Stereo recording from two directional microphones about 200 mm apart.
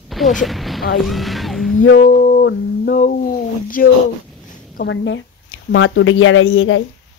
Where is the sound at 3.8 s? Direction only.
45° left (ahead or behind).